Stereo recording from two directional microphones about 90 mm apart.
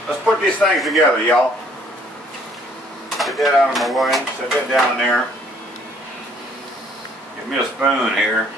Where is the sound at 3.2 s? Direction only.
Centre (ahead or behind).